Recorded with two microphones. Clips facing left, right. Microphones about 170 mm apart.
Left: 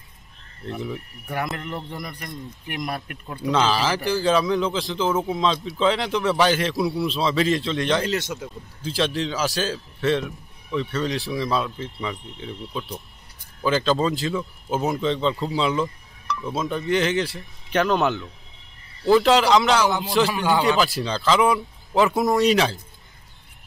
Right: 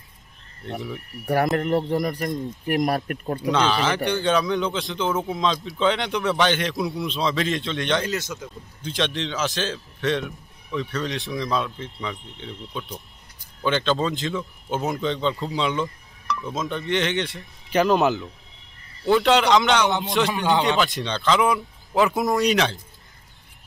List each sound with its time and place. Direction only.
1.2 s speech: 40° right (ahead or behind)
3.5 s a man's voice: centre (ahead or behind)
8.0 s a man's voice: 30° left (ahead or behind)
8.8 s a man's voice: 5° left (ahead or behind)